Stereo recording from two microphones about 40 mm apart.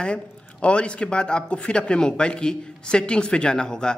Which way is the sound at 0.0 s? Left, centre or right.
Left.